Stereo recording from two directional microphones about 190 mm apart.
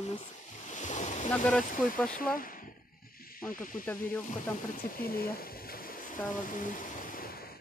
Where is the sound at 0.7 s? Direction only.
40° left (ahead or behind).